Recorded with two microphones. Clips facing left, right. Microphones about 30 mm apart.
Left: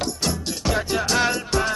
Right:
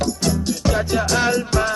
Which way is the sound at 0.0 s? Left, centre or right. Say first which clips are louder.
Right 5 dB; centre.